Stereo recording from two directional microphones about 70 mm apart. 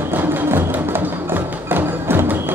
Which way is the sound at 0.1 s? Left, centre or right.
Right.